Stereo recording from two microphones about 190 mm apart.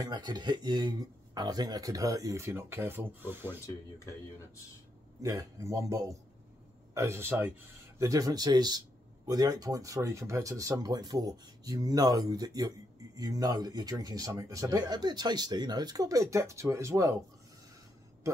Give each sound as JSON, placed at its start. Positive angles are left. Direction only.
{"t": 0.0, "sound": "speech", "side_deg": -20}
{"t": 3.6, "sound": "speech", "side_deg": 15}
{"t": 5.2, "sound": "a man's voice", "side_deg": -15}